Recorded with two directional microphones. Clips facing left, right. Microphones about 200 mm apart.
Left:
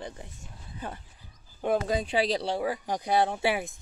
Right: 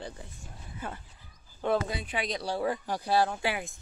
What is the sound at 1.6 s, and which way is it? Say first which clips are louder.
Speech: left 1 dB; 15° left (ahead or behind).